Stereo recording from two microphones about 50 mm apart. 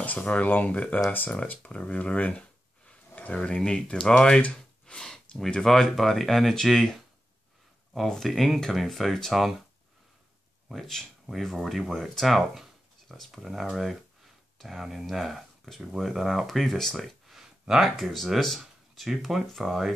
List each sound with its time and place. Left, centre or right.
0.0 s speech: left
3.3 s speech: centre
4.4 s gasp: left
4.9 s speech: centre
8.1 s speech: centre
11.2 s speech: centre